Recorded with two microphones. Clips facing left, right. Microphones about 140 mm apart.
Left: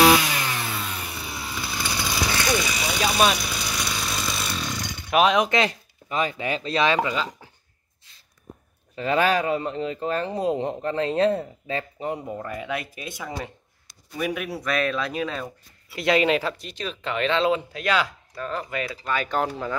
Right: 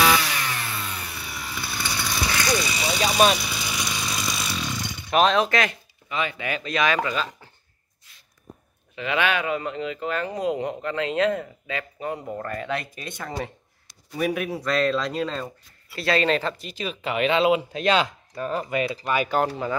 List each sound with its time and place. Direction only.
0.0 s chainsaw: 25° left (ahead or behind)
0.7 s a sound: 10° left (ahead or behind)
1.5 s chainsaw: 5° left (ahead or behind)
5.7 s speech: 40° left (ahead or behind); by 7.3 s 20° left (ahead or behind)
8.9 s a man's voice: 35° left (ahead or behind); by 12.4 s 20° left (ahead or behind)
12.4 s speech: 10° left (ahead or behind)
14.1 s speech: 40° right (ahead or behind)
15.9 s speech: 15° left (ahead or behind); by 17.6 s 10° right (ahead or behind)
17.7 s speech: 25° right (ahead or behind)
19.2 s speech: 5° right (ahead or behind)